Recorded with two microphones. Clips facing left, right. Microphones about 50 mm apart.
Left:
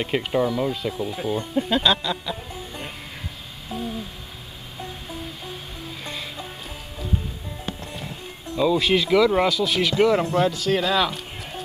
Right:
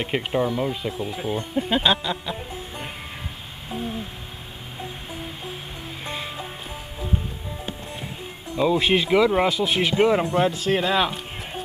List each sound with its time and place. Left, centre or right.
0.0 s speech: centre
3.6 s a sound: right
5.1 s music: centre
8.5 s speech: right
10.1 s speech: centre
10.5 s speech: right